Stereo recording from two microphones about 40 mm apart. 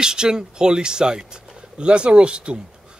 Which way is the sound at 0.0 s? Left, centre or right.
Centre.